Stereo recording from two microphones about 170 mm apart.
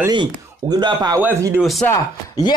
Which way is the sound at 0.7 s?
25° right (ahead or behind).